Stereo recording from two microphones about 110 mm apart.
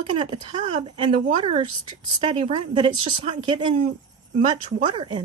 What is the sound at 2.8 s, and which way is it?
Speech, 45° right (ahead or behind).